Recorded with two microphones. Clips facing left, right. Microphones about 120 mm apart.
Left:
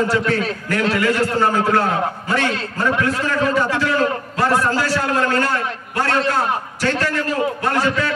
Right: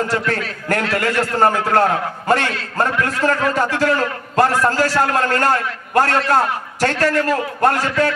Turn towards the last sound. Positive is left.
turn(degrees=-50)  # may be behind; listen again after turning